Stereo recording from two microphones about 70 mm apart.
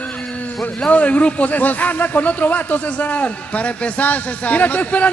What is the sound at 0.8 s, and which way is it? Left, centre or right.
Speech, centre.